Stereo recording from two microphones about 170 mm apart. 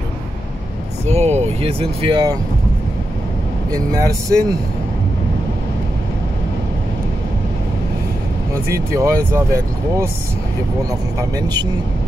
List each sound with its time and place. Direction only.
1.0 s speech: 40° right (ahead or behind)
3.7 s speech: 20° right (ahead or behind)
8.6 s speech: 20° right (ahead or behind)